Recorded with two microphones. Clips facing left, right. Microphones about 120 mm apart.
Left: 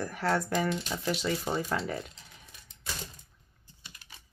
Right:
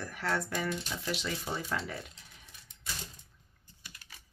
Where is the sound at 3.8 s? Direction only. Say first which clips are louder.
Left 1 dB; 20° left (ahead or behind).